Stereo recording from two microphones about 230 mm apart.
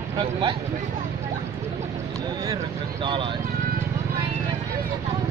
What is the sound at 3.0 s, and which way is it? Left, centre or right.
Speech, right.